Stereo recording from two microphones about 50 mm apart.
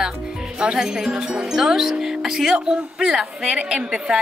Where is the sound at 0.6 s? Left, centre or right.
Centre.